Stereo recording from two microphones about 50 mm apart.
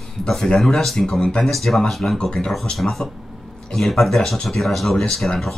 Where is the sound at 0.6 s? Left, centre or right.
Centre.